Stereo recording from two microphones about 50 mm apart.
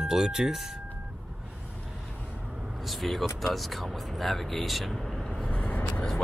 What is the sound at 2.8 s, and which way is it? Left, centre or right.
Speech, centre.